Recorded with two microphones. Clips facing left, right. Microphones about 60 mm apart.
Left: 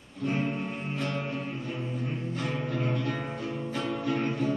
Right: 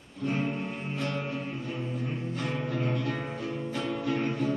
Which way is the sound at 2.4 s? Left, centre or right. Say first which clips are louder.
Even; centre.